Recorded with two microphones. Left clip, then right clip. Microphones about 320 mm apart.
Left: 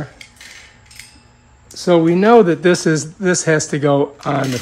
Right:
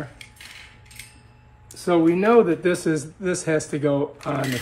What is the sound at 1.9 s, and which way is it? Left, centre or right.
Speech, left.